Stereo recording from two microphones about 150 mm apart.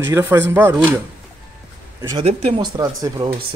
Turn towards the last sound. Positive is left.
turn(degrees=-25)  # may be behind; listen again after turning